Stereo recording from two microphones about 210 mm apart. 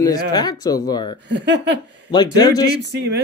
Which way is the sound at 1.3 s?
55° right (ahead or behind).